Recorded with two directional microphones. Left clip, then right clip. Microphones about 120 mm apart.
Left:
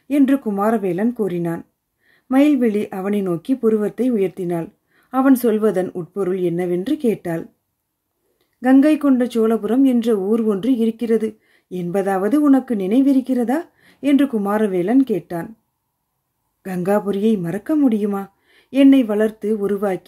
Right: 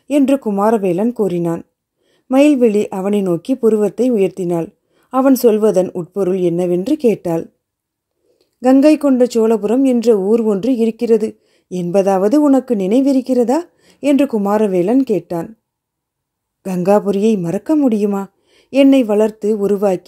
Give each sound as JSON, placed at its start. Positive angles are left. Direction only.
{"t": 0.1, "sound": "a woman's voice", "side_deg": -50}
{"t": 8.5, "sound": "a woman's voice", "side_deg": -50}
{"t": 16.6, "sound": "a woman's voice", "side_deg": -55}